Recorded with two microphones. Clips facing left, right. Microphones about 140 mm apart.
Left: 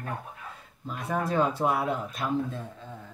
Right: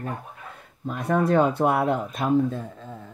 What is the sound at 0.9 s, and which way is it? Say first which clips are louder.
Speech: right 7 dB; 60° right (ahead or behind).